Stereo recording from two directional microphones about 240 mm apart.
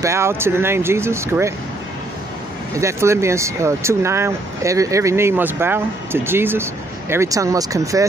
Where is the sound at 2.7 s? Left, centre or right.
Centre.